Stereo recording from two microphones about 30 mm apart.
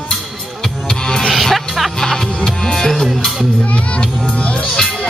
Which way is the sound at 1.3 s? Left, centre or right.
Centre.